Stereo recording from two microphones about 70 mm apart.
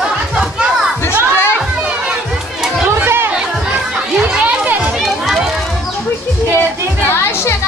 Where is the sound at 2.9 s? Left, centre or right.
Right.